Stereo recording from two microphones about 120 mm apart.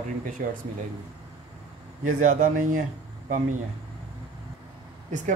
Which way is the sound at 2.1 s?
90° right.